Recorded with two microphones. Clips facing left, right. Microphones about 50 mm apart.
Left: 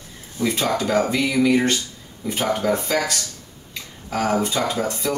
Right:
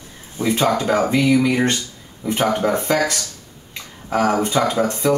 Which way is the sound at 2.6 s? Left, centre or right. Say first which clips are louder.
Left 1 dB; right.